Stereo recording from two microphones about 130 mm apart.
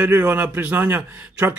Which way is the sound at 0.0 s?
15° right (ahead or behind).